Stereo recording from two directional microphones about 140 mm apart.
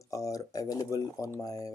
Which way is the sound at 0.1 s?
25° left (ahead or behind).